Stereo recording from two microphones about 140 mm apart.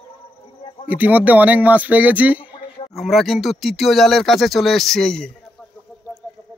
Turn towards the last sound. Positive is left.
turn(degrees=5)  # may be behind; listen again after turning